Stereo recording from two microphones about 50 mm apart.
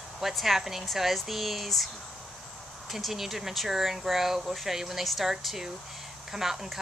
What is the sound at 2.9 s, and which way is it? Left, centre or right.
Speech, centre.